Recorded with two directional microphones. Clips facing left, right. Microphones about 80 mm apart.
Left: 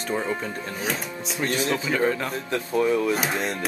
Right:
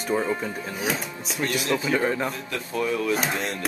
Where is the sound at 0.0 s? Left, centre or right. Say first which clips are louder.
Right 2 dB; centre.